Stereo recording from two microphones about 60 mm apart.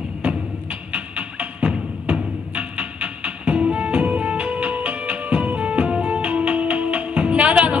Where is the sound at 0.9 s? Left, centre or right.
Right.